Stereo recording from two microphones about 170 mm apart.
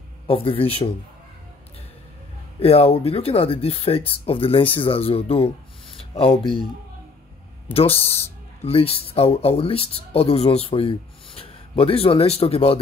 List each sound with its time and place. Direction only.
0.3 s speech: 35° left (ahead or behind)
2.6 s speech: 35° left (ahead or behind)
7.7 s speech: 35° left (ahead or behind)